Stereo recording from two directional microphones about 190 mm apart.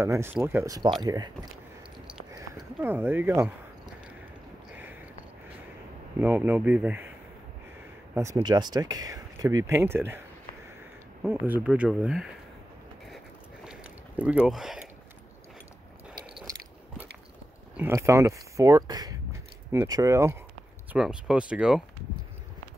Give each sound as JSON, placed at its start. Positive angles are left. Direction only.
{"t": 0.0, "sound": "speech", "side_deg": -15}
{"t": 2.8, "sound": "speech", "side_deg": -10}
{"t": 6.2, "sound": "speech", "side_deg": -10}
{"t": 8.1, "sound": "speech", "side_deg": -15}
{"t": 11.2, "sound": "speech", "side_deg": -10}
{"t": 13.7, "sound": "a sound", "side_deg": -5}
{"t": 17.7, "sound": "speech", "side_deg": -15}
{"t": 20.9, "sound": "speech", "side_deg": -5}